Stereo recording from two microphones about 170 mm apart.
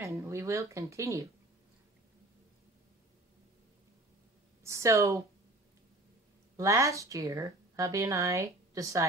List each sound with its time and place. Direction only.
0.0 s speech: 15° right (ahead or behind)
4.6 s speech: 20° right (ahead or behind)
6.5 s a woman's voice: 20° right (ahead or behind)